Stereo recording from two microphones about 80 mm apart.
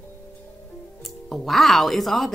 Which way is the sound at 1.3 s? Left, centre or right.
Centre.